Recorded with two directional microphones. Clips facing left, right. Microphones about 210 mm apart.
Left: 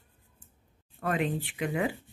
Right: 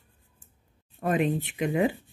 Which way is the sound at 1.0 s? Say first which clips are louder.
Right 4 dB; 20° right (ahead or behind).